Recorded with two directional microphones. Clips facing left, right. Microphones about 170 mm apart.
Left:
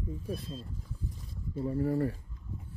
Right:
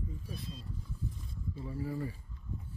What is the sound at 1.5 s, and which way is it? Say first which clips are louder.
Speech: left 9 dB; 55° left (ahead or behind).